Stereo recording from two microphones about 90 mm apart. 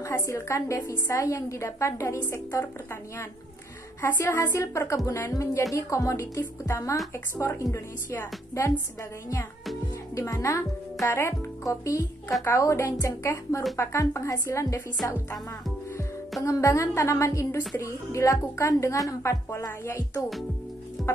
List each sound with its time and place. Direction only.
0.0 s a woman's voice: 30° left (ahead or behind)
4.0 s a woman's voice: 30° left (ahead or behind)
10.1 s a woman's voice: 35° left (ahead or behind)
16.4 s a woman's voice: 35° left (ahead or behind)